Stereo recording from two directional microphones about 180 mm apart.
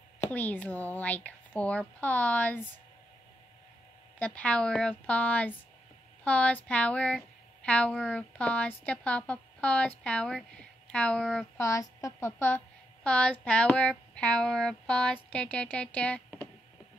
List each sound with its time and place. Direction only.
0.3 s speech: 10° left (ahead or behind)
4.2 s speech: 5° left (ahead or behind)
11.6 s speech: 20° left (ahead or behind)